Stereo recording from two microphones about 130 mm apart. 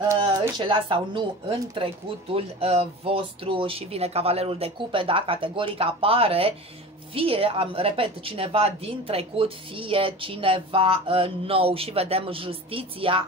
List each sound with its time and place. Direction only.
0.4 s speech: 35° right (ahead or behind)